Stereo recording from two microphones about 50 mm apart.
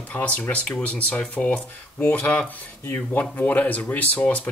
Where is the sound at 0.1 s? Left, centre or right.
Left.